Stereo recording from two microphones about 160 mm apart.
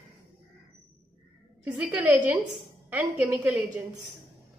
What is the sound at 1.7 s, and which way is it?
A woman's voice, 15° right (ahead or behind).